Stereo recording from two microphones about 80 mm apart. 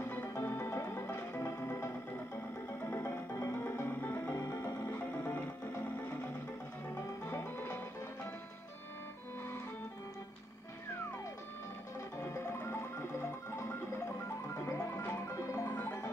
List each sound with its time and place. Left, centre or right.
0.0 s music: left
4.9 s music: left
7.2 s music: left
12.2 s music: left